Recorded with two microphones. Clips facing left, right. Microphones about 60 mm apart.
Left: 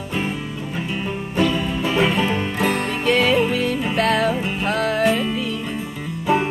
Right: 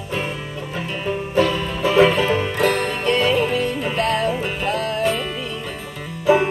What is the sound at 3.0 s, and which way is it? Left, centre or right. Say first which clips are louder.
Music: left 2 dB; left.